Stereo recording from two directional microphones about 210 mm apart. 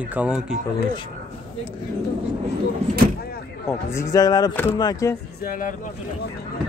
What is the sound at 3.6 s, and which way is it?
Speech, 15° left (ahead or behind).